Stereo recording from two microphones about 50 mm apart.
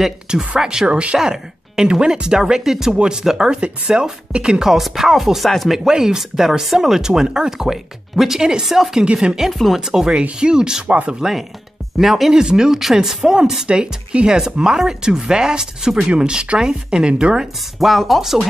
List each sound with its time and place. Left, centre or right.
0.0 s speech: centre
0.8 s speech: right; by 5.8 s centre
5.9 s speech: centre
9.0 s speech: right
9.5 s speech: centre
9.8 s speech: centre
10.9 s speech: right
11.1 s speech: centre
17.7 s speech: centre